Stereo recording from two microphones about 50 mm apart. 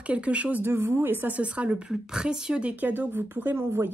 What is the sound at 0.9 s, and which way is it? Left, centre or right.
A woman's voice, right.